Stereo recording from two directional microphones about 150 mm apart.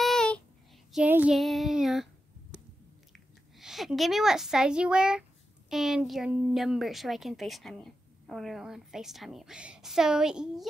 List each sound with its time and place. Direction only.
0.0 s a sound: 5° left (ahead or behind)
0.9 s child singing: 10° right (ahead or behind)
3.5 s a woman's voice: centre (ahead or behind)